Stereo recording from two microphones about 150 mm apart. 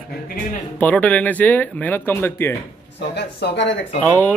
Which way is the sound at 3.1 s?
90° left.